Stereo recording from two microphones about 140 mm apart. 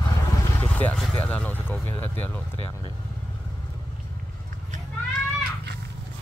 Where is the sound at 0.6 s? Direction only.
10° left (ahead or behind).